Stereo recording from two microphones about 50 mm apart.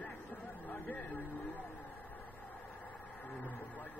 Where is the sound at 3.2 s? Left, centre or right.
Left.